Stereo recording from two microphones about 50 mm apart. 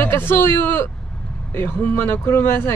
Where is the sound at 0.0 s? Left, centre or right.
Left.